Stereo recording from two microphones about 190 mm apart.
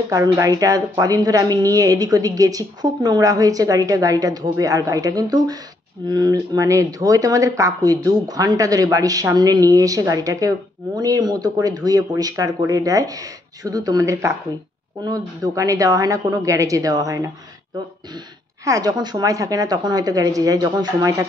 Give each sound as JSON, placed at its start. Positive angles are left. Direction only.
{"t": 0.1, "sound": "a woman's voice", "side_deg": -20}
{"t": 18.7, "sound": "a woman's voice", "side_deg": -20}